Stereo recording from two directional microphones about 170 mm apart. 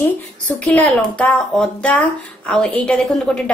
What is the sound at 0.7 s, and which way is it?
A woman's voice, 10° left (ahead or behind).